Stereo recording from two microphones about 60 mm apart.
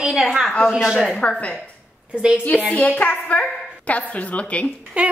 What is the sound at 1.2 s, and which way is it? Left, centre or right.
Speech, centre.